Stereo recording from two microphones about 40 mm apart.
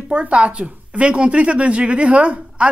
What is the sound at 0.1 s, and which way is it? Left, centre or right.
Speech, right.